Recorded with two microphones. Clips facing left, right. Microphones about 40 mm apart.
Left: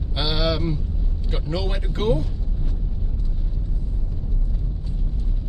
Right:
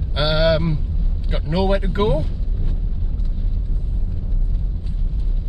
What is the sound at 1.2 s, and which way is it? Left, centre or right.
Speech, centre.